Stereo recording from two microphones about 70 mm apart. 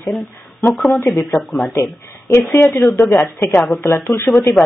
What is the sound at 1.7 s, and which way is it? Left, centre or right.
Speech, left.